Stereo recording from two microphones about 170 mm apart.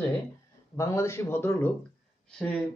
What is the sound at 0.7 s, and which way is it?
Speech, 20° left (ahead or behind).